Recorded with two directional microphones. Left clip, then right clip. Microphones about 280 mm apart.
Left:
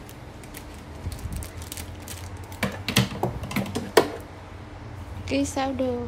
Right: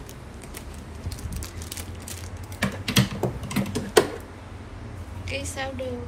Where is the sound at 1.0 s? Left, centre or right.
Centre.